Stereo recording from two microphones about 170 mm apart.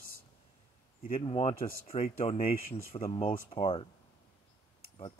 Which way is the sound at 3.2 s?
30° left (ahead or behind).